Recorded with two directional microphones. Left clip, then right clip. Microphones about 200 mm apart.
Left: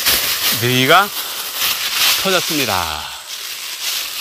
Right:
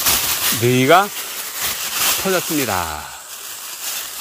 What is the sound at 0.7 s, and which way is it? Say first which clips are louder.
Speech: left 1 dB; 35° right (ahead or behind).